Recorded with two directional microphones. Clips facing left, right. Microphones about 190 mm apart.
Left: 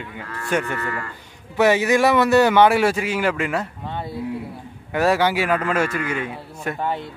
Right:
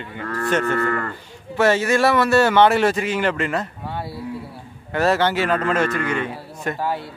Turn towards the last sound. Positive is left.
turn(degrees=5)  # may be behind; listen again after turning